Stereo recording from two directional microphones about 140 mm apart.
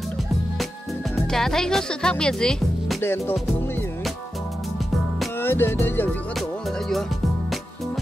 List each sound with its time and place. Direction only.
1.1 s speech: 5° left (ahead or behind)
3.0 s music: 15° left (ahead or behind)
5.4 s music: 15° left (ahead or behind)